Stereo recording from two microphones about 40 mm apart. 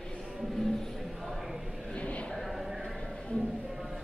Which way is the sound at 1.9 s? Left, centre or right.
Left.